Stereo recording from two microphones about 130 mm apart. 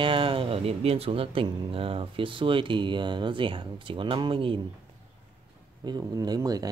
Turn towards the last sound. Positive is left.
turn(degrees=-30)  # may be behind; listen again after turning